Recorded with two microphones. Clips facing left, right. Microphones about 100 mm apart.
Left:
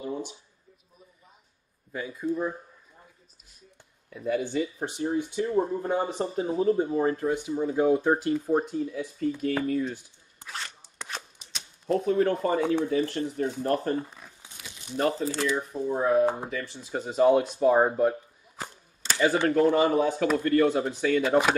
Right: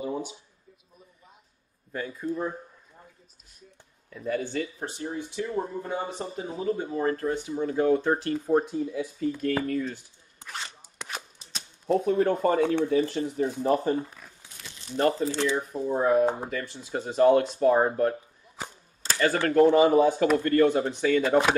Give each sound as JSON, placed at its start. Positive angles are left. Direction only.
{"t": 0.0, "sound": "a sound", "side_deg": -10}
{"t": 1.9, "sound": "speech", "side_deg": 5}
{"t": 4.1, "sound": "speech", "side_deg": 10}
{"t": 5.7, "sound": "speech", "side_deg": 35}
{"t": 7.2, "sound": "speech", "side_deg": 5}
{"t": 11.8, "sound": "speech", "side_deg": 0}
{"t": 19.1, "sound": "speech", "side_deg": 10}